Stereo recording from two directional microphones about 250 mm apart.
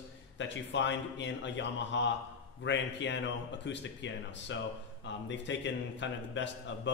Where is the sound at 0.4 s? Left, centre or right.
Left.